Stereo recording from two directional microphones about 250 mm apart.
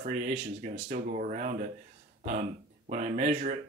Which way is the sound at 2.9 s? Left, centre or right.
Right.